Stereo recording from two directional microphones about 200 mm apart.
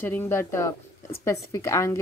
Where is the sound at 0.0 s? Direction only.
10° left (ahead or behind).